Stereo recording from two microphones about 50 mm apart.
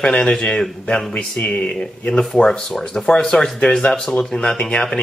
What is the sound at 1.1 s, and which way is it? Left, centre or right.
Speech, left.